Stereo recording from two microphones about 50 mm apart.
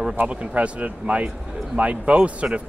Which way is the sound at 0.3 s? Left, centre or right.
Right.